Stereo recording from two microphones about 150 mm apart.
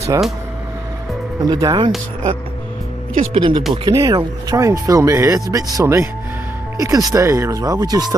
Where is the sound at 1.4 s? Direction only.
25° right (ahead or behind).